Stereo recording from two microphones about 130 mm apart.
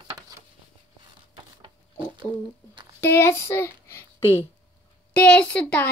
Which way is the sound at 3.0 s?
20° left (ahead or behind).